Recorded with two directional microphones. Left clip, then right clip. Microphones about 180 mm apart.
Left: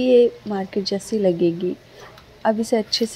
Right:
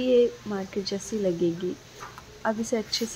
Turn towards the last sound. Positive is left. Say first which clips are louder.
# left 8 dB
turn(degrees=20)  # may be behind; listen again after turning